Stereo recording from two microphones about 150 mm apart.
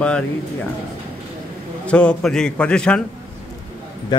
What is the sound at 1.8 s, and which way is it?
A man's voice, 5° left (ahead or behind).